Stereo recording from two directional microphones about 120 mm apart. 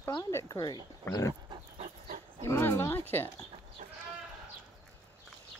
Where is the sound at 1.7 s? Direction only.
90° right.